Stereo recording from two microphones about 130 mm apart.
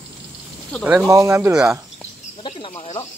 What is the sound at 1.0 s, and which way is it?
Speech, 25° right (ahead or behind).